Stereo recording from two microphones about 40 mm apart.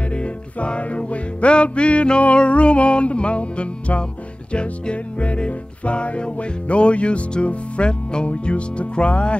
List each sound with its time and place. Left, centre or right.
0.1 s music: left